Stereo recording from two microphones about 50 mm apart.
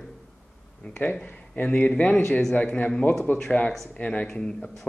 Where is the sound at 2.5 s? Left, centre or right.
Left.